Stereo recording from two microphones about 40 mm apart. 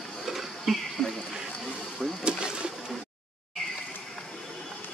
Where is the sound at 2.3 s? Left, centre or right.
Right.